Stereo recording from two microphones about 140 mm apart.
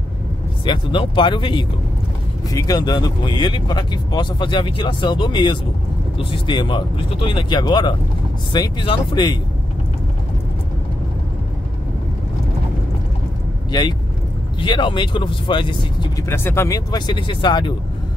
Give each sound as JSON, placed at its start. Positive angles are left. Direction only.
{"t": 0.7, "sound": "speech", "side_deg": 35}
{"t": 13.7, "sound": "speech", "side_deg": 30}
{"t": 16.3, "sound": "speech", "side_deg": 20}